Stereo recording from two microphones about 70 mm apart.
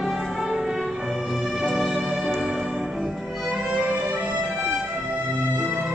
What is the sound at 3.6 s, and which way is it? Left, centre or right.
Music, centre.